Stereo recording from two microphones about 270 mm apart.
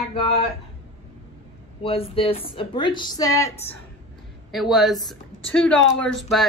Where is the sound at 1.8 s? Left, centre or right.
Left.